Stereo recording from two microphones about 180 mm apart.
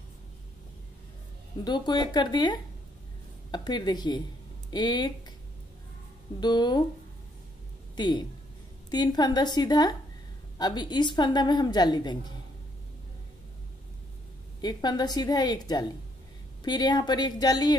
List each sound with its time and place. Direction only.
1.6 s a woman's voice: 25° left (ahead or behind)
6.4 s a woman's voice: 25° left (ahead or behind)
7.9 s a woman's voice: 25° left (ahead or behind)
14.6 s a woman's voice: 25° left (ahead or behind)